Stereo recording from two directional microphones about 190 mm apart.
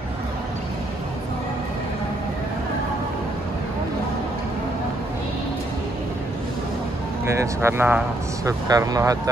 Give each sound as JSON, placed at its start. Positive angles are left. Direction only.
{"t": 7.3, "sound": "speech", "side_deg": -15}